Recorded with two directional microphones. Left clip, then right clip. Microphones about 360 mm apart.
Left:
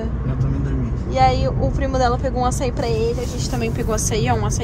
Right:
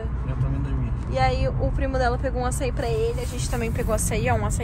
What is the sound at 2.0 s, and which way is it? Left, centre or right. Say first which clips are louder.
Speech: left 6 dB; centre.